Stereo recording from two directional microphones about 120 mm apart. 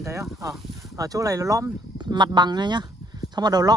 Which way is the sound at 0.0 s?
25° right (ahead or behind).